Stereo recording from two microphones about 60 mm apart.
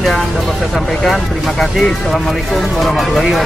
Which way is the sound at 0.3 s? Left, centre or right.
Centre.